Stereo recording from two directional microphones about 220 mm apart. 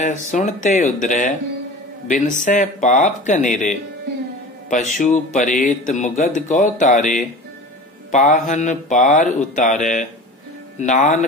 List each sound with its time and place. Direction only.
0.3 s speech: 35° left (ahead or behind)
8.1 s speech: 35° left (ahead or behind)